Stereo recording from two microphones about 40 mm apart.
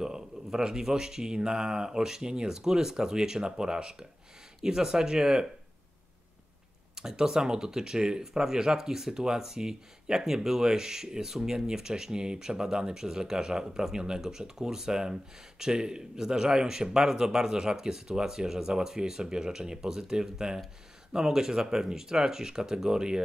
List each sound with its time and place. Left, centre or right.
0.0 s speech: centre
7.0 s speech: centre